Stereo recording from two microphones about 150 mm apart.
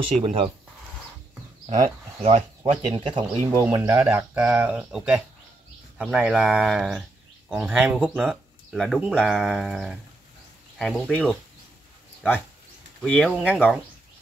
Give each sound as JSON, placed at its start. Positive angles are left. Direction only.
{"t": 0.2, "sound": "speech", "side_deg": -40}
{"t": 2.1, "sound": "speech", "side_deg": -40}
{"t": 3.4, "sound": "speech", "side_deg": -20}
{"t": 9.1, "sound": "a sound", "side_deg": 0}
{"t": 13.0, "sound": "a sound", "side_deg": 5}
{"t": 13.5, "sound": "speech", "side_deg": -5}